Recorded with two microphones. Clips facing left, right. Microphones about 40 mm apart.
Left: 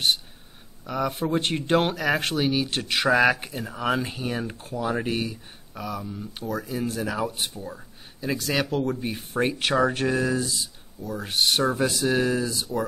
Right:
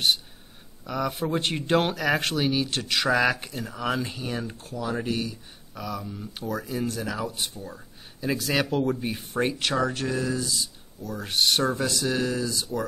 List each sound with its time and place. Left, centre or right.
0.8 s speech: centre; by 5.4 s left
5.8 s speech: centre
6.9 s speech: centre
7.2 s speech: left
7.6 s speech: centre
9.5 s speech: centre; by 10.4 s left
11.1 s speech: centre; by 12.6 s left